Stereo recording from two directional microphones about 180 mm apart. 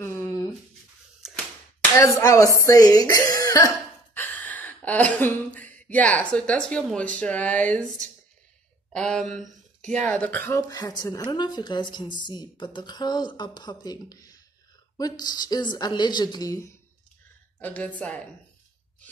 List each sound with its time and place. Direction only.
0.0 s a sound: 15° left (ahead or behind)
1.8 s speech: 20° left (ahead or behind)
8.9 s a woman's voice: 5° left (ahead or behind)
17.6 s a woman's voice: 10° left (ahead or behind)